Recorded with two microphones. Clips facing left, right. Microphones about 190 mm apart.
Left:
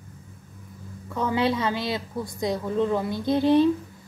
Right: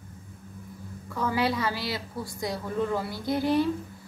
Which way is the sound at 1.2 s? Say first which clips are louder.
Left 3 dB; 20° left (ahead or behind).